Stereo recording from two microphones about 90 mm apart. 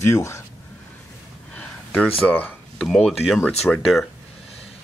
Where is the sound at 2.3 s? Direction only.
20° left (ahead or behind).